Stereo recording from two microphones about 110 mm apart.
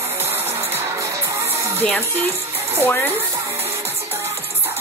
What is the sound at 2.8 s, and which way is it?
Speech, 20° left (ahead or behind).